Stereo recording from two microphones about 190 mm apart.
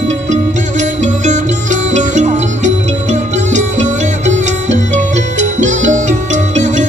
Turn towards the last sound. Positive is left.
turn(degrees=-40)  # may be behind; listen again after turning